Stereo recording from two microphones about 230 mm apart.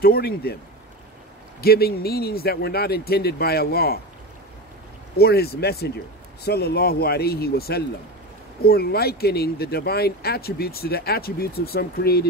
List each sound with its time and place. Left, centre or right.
0.0 s speech: left
1.6 s speech: left
5.1 s speech: left